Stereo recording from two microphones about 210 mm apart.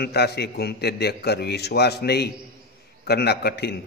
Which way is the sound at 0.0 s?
50° left (ahead or behind).